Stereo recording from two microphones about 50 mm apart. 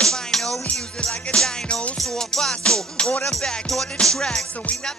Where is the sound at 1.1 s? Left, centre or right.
Left.